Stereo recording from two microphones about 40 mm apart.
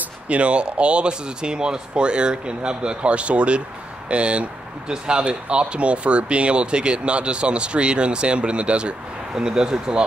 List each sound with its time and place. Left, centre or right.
0.0 s speech: right